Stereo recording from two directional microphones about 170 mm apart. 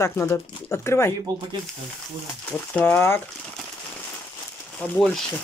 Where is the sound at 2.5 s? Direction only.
10° left (ahead or behind).